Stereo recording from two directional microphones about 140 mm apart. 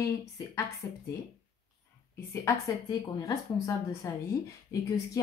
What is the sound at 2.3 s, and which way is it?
Speech, 20° left (ahead or behind).